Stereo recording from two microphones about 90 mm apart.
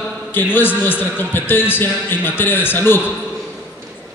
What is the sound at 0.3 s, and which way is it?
A man's voice, 20° left (ahead or behind).